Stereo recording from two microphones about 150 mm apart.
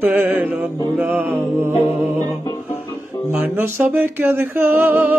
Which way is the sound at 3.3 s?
15° right (ahead or behind).